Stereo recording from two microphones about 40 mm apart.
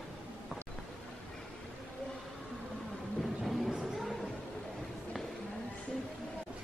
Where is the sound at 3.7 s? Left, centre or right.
Centre.